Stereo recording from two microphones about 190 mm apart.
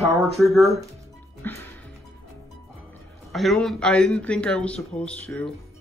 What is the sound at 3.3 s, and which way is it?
A man's voice, centre (ahead or behind).